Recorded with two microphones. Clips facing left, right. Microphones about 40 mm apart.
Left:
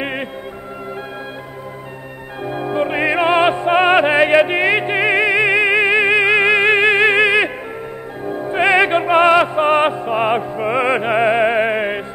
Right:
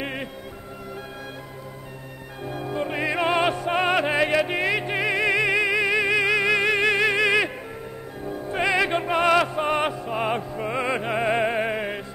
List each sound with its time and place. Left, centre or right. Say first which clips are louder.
0.0 s music: left 7 dB; left
2.4 s music: left 8 dB; left